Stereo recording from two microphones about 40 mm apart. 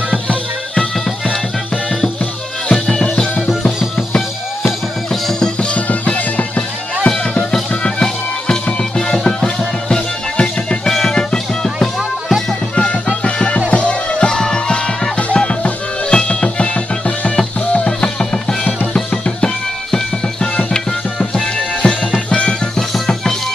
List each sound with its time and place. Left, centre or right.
2.7 s music: centre
5.8 s music: left
7.8 s music: left
10.3 s music: left
12.3 s music: centre
13.2 s music: left
15.1 s music: left
18.9 s music: centre
22.8 s music: centre